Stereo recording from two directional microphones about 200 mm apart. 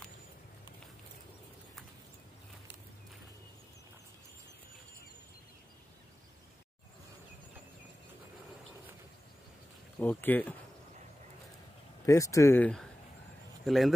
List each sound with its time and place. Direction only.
9.9 s speech: 10° left (ahead or behind)
12.1 s speech: 15° left (ahead or behind); by 13.9 s centre (ahead or behind)